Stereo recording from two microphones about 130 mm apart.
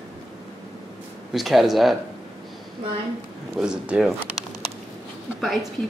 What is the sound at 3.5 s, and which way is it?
Speech, 5° right (ahead or behind).